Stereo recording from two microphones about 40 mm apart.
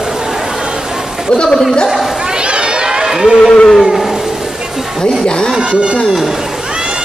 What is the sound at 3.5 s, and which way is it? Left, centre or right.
Speech, centre.